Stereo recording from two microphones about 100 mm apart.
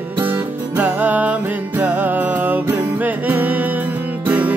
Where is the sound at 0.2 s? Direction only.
20° right (ahead or behind).